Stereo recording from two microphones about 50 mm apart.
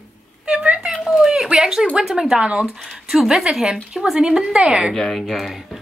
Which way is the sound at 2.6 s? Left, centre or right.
Centre.